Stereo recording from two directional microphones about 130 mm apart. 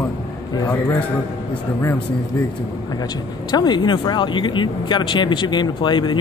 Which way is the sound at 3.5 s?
35° left (ahead or behind).